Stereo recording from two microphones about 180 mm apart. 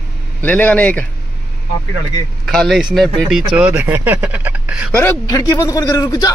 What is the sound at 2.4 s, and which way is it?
Speech, centre (ahead or behind).